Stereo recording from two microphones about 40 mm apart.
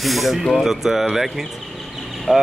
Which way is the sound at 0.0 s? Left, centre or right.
Centre.